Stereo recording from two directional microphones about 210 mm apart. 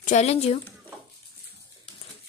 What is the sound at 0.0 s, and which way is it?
Speech, 30° left (ahead or behind).